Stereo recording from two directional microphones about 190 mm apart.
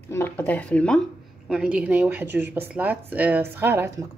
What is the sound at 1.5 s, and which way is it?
Speech, 5° right (ahead or behind).